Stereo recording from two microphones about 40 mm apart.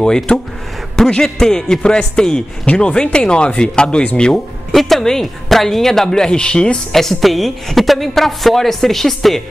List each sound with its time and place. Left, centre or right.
0.0 s speech: centre
2.6 s speech: left
4.3 s speech: centre; by 6.8 s left
6.9 s a woman's voice: centre